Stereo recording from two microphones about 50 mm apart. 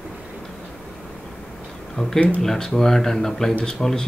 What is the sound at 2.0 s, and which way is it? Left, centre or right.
Speech, centre.